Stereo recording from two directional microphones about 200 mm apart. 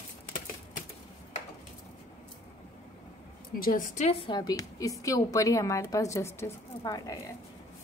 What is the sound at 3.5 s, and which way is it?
Speech, 45° left (ahead or behind).